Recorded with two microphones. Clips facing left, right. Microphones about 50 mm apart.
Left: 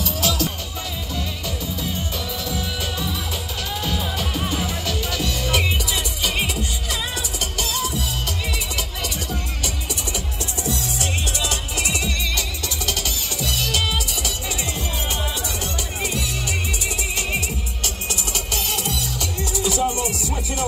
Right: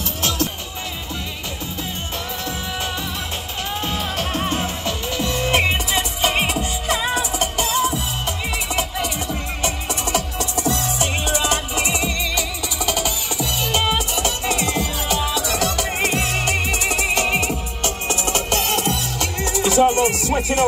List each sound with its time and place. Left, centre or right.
0.0 s music: right
4.4 s music: right
4.8 s music: right
10.1 s music: right
11.2 s music: right
12.4 s music: centre; by 14.6 s right
14.6 s music: right